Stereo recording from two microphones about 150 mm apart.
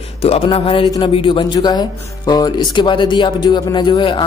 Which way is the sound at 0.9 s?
35° left (ahead or behind).